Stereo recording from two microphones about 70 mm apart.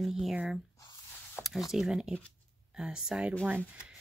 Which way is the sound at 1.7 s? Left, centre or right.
Centre.